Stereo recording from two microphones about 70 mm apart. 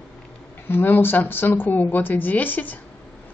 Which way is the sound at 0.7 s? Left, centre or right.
Left.